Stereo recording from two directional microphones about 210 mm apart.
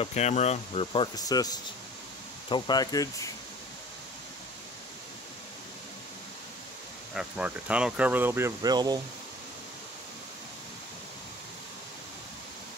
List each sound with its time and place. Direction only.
0.0 s speech: 30° left (ahead or behind)
7.2 s speech: 5° right (ahead or behind)